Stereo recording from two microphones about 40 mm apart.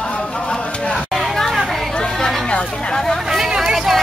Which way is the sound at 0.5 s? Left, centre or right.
Left.